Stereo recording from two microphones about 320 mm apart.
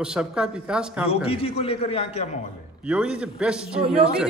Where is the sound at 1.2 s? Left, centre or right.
Centre.